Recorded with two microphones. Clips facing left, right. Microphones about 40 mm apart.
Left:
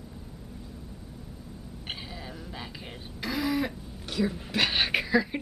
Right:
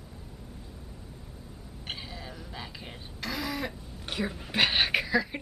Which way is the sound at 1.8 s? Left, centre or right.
Centre.